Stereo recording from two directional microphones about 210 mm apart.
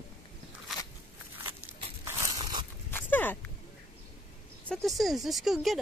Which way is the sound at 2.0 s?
15° right (ahead or behind).